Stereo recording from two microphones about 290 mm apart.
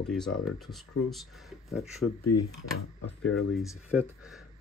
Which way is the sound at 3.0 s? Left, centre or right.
Left.